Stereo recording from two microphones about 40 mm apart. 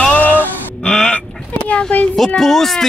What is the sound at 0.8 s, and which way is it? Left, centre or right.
Chicken, left.